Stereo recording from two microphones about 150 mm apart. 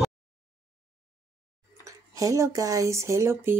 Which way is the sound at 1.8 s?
20° right (ahead or behind).